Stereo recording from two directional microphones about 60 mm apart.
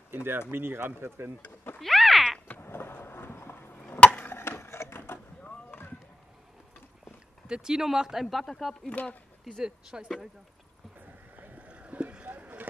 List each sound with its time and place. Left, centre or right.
0.1 s speech: right
1.8 s a sound: centre
2.4 s a sound: left
4.0 s chop: left
4.4 s printer: left
7.4 s speech: centre
8.8 s speech: centre
9.6 s speech: centre
11.3 s boat: right
12.3 s rowboat: right